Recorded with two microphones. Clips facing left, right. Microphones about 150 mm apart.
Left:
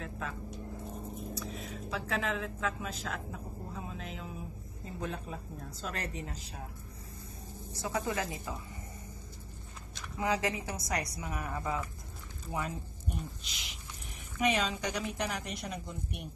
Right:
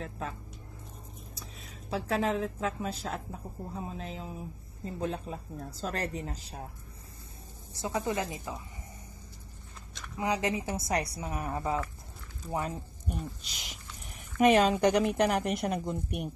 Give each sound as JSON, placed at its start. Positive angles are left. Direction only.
{"t": 0.0, "sound": "vehicle", "side_deg": -35}
{"t": 1.5, "sound": "a sound", "side_deg": 45}
{"t": 1.9, "sound": "a woman's voice", "side_deg": -35}
{"t": 7.7, "sound": "a woman's voice", "side_deg": -25}
{"t": 10.1, "sound": "a woman's voice", "side_deg": -20}
{"t": 13.5, "sound": "a woman's voice", "side_deg": -45}